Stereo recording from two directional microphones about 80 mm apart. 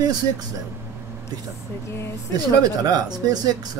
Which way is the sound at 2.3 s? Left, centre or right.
Right.